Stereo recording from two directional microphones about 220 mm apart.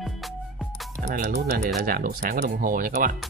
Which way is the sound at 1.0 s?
35° right (ahead or behind).